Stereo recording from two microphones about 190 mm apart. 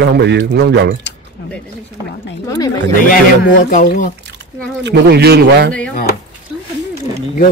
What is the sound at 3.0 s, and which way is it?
Speech, 45° left (ahead or behind).